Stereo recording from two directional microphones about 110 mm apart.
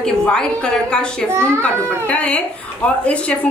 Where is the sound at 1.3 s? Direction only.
25° right (ahead or behind).